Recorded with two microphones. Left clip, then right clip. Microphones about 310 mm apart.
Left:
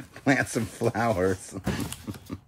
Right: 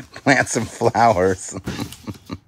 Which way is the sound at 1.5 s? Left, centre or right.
Right.